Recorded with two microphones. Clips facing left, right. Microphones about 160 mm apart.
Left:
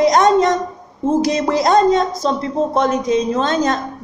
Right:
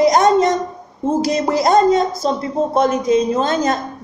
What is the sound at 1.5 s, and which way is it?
Speech, 5° right (ahead or behind).